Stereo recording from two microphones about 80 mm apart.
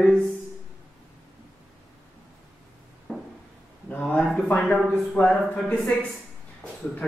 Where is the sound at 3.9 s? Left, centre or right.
Centre.